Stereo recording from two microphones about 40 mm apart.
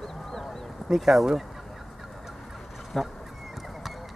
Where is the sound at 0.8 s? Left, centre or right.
Centre.